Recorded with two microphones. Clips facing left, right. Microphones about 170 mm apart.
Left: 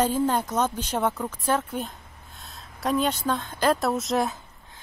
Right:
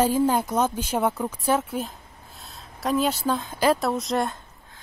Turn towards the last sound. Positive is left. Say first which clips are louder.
# even
turn(degrees=0)  # may be behind; listen again after turning